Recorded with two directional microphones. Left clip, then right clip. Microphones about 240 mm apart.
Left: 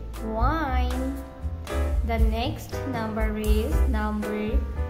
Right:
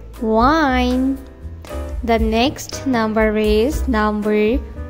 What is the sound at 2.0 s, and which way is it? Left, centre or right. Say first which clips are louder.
A woman's voice: right 14 dB; right.